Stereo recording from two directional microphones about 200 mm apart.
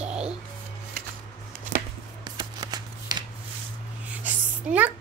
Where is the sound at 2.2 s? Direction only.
20° right (ahead or behind).